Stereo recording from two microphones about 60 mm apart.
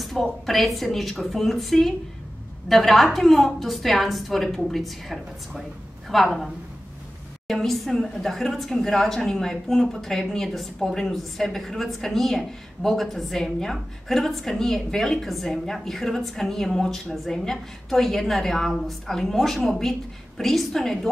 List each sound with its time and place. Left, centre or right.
0.0 s speech: centre